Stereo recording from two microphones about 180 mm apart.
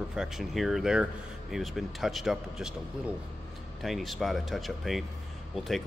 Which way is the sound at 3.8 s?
Centre (ahead or behind).